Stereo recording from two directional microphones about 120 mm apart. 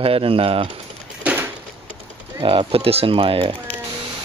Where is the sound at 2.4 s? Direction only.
50° right (ahead or behind).